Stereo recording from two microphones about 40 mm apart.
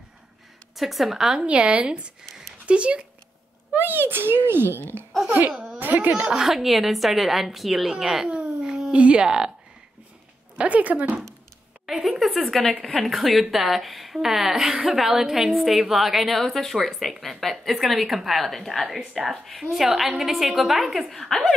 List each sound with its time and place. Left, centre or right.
0.7 s a woman's voice: centre
1.4 s a woman's voice: right
3.7 s a child's voice: right
5.8 s speech: right
6.1 s a woman's voice: centre
8.3 s dog: right
8.9 s a woman's voice: right
10.6 s speech: right
11.8 s a woman's voice: centre
21.1 s speech: centre